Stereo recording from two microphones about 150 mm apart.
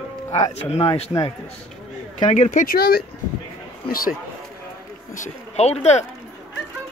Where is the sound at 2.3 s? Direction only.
60° left (ahead or behind); by 3.1 s 85° left.